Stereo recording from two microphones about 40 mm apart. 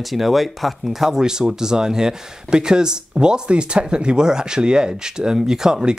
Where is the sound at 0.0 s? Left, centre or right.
Centre.